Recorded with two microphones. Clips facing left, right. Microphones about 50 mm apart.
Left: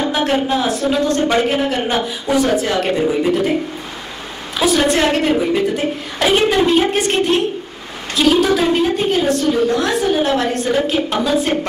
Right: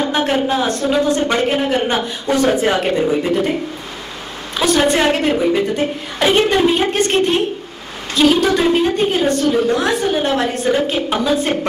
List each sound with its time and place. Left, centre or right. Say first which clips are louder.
0.1 s a woman's voice: even; centre
2.5 s speech: right 1 dB; right
2.9 s a woman's voice: even; centre
4.6 s a woman's voice: even; centre